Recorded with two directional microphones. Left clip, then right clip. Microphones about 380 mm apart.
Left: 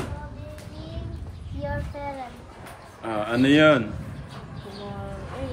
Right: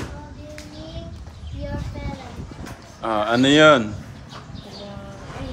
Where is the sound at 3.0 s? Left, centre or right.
Centre.